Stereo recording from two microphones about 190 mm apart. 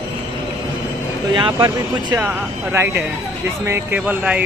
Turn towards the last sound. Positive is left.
turn(degrees=-5)  # may be behind; listen again after turning